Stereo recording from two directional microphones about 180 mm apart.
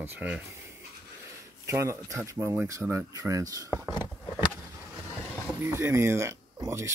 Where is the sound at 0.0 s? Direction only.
10° right (ahead or behind).